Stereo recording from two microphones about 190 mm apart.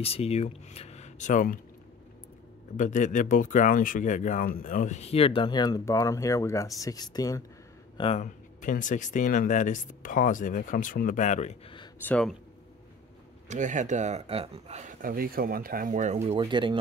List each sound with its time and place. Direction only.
0.0 s speech: 30° left (ahead or behind)
2.8 s speech: 40° left (ahead or behind); by 7.4 s 20° left (ahead or behind)
8.0 s speech: 35° left (ahead or behind)
12.0 s speech: 5° left (ahead or behind)
13.5 s speech: 40° right (ahead or behind); by 16.8 s 25° right (ahead or behind)